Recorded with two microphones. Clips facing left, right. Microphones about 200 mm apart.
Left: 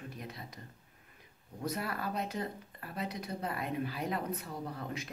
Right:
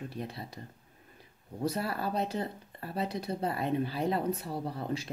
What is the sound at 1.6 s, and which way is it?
Speech, 30° right (ahead or behind).